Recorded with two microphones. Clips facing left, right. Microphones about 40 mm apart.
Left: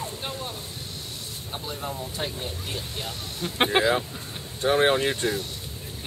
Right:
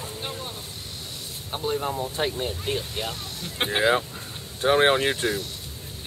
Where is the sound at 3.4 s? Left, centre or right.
Centre.